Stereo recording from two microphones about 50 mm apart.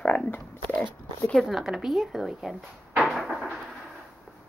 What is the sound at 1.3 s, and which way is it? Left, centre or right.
Speech, centre.